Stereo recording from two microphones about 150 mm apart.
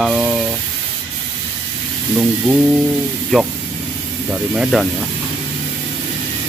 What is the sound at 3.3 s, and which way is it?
Spray, centre (ahead or behind).